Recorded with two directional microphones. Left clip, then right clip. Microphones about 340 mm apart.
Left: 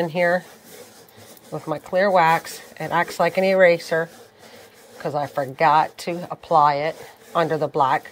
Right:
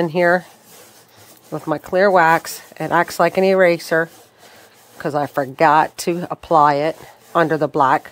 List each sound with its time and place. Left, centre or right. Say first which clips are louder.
0.0 s speech: right 4 dB; centre
1.7 s speech: right 4 dB; centre